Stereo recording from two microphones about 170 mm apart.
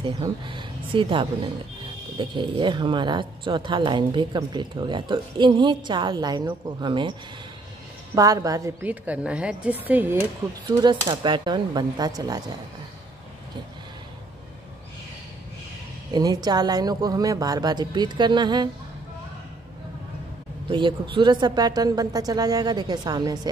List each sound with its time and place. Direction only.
0.0 s a woman's voice: 30° right (ahead or behind); by 10.1 s 10° right (ahead or behind)
10.8 s speech: 25° right (ahead or behind)
16.1 s speech: 25° right (ahead or behind)
20.7 s speech: 30° right (ahead or behind)